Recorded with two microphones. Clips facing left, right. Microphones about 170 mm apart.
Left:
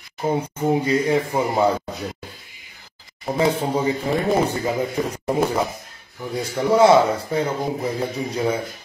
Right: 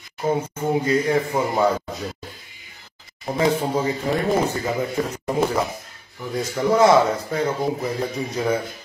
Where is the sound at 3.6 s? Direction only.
10° left (ahead or behind).